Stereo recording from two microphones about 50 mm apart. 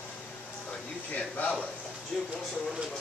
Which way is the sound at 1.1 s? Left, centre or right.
Left.